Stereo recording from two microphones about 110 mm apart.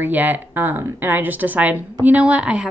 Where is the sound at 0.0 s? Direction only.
15° right (ahead or behind).